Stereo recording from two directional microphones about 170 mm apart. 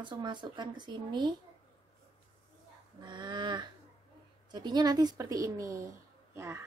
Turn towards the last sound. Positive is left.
turn(degrees=-15)  # may be behind; listen again after turning